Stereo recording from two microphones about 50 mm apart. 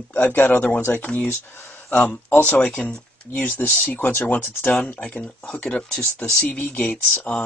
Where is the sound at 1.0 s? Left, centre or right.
Left.